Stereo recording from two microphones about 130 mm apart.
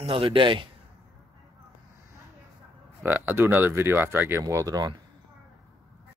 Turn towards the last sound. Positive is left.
turn(degrees=-25)  # may be behind; listen again after turning